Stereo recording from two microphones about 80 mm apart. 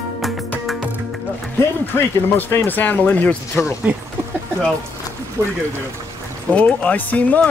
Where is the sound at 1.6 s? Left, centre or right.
Left.